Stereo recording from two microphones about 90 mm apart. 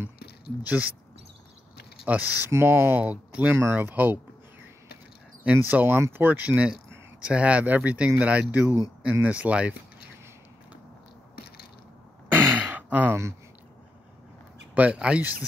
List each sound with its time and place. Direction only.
0.6 s speech: 15° right (ahead or behind)
2.0 s speech: 15° right (ahead or behind)
2.5 s speech: 25° right (ahead or behind)
5.7 s speech: 20° right (ahead or behind)
12.3 s a sound: 25° right (ahead or behind)
14.7 s speech: 15° right (ahead or behind)